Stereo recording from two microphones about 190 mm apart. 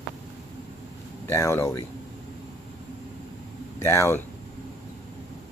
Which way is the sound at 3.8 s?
15° left (ahead or behind).